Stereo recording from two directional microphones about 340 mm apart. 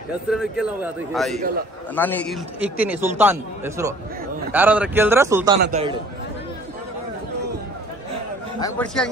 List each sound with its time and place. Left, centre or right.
0.3 s a man's voice: centre
8.5 s a man's voice: centre